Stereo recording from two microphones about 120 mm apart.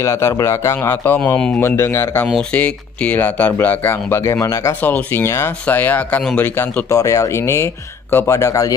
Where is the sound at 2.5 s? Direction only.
10° left (ahead or behind).